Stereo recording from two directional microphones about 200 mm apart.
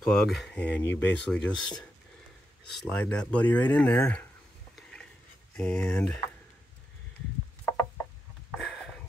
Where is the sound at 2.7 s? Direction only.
5° left (ahead or behind).